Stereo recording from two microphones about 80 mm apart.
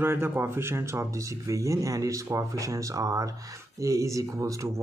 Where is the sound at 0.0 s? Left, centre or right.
Right.